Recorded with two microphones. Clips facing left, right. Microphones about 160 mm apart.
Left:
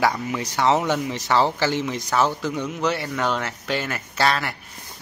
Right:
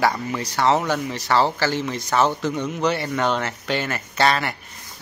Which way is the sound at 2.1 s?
5° left (ahead or behind).